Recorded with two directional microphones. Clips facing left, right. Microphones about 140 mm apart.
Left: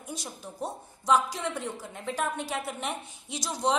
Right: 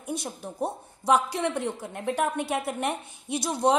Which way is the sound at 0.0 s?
60° right (ahead or behind).